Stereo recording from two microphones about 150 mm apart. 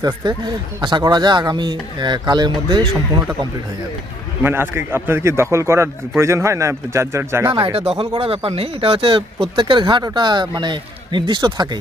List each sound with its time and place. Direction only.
0.0 s a man's voice: 30° right (ahead or behind)
4.4 s a man's voice: 15° right (ahead or behind)
7.5 s speech: 35° right (ahead or behind)